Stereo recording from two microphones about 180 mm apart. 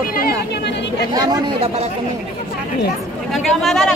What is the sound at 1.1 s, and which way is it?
Speech, 20° right (ahead or behind).